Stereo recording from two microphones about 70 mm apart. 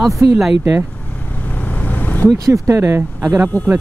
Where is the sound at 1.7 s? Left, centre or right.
Left.